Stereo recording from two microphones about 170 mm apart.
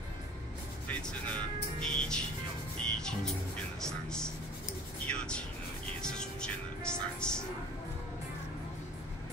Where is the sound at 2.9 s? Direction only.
5° left (ahead or behind).